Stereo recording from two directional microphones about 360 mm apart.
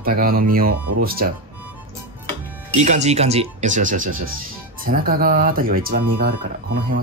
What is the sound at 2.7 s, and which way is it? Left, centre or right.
Speech, centre.